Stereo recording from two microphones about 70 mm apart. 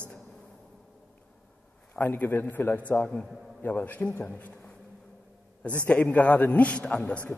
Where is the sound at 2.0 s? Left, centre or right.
Left.